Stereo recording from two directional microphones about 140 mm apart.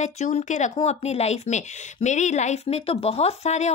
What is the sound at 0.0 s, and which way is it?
Speech, 55° left (ahead or behind).